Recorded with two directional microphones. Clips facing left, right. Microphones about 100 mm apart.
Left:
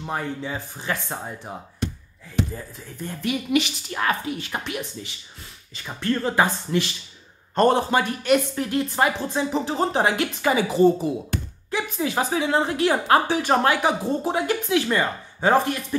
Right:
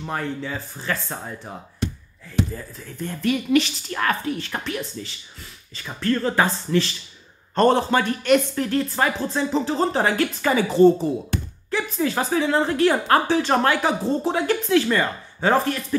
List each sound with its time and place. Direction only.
0.0 s speech: 15° left (ahead or behind)
2.5 s speech: 15° left (ahead or behind)